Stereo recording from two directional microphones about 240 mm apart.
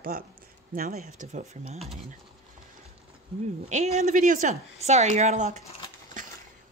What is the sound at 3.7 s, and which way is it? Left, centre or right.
Speech, right.